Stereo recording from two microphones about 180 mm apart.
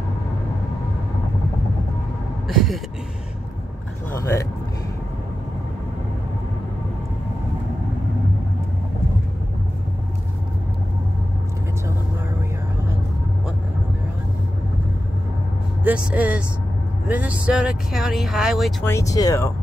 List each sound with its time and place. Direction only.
2.4 s vehicle: centre (ahead or behind)
4.2 s speech: 15° left (ahead or behind)
15.8 s speech: 5° right (ahead or behind)
18.9 s speech: 15° left (ahead or behind)